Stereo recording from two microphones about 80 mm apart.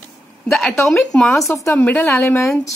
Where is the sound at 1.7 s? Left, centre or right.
Left.